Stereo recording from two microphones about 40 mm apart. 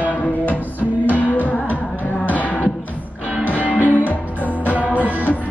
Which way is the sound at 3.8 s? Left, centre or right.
Right.